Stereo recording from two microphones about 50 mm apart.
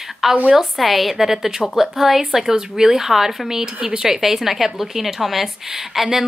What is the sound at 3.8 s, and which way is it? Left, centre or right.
Speech, right.